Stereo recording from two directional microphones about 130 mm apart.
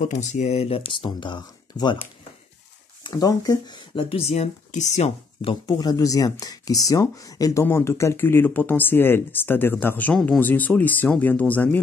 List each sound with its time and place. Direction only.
0.0 s speech: 65° left (ahead or behind); by 2.0 s 35° left (ahead or behind)
3.0 s speech: 25° left (ahead or behind); by 5.1 s 60° left (ahead or behind)
5.4 s speech: 35° left (ahead or behind); by 11.8 s 10° left (ahead or behind)